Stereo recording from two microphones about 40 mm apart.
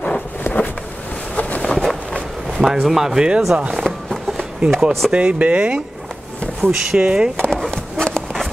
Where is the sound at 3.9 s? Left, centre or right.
Centre.